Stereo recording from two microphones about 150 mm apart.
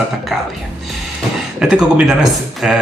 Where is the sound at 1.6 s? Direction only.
5° right (ahead or behind).